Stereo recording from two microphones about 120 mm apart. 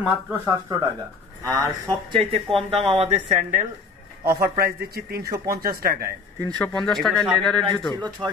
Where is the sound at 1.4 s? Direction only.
25° right (ahead or behind).